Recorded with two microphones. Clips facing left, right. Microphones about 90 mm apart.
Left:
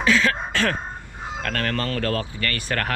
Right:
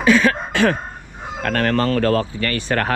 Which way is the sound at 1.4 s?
35° right (ahead or behind).